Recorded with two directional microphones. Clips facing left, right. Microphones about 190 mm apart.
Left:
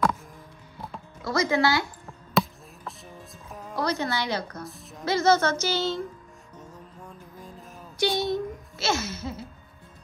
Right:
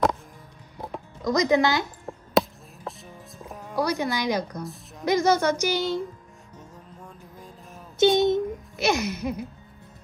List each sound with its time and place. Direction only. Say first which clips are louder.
0.7 s music: right 4 dB; 15° right (ahead or behind)
3.0 s music: right 2 dB; centre (ahead or behind)
3.7 s a woman's voice: right 2 dB; 10° right (ahead or behind)
6.6 s music: left 1 dB; centre (ahead or behind)
8.2 s a sound: right 6 dB; 20° right (ahead or behind)